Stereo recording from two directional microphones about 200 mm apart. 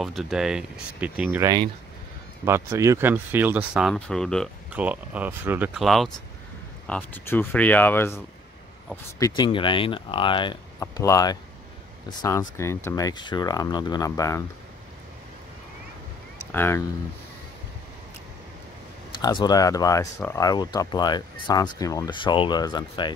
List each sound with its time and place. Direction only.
0.0 s speech: centre (ahead or behind)
4.8 s speech: 10° right (ahead or behind); by 8.2 s 10° left (ahead or behind)
9.2 s speech: 20° left (ahead or behind)
16.5 s speech: 10° left (ahead or behind)
19.2 s speech: 20° left (ahead or behind)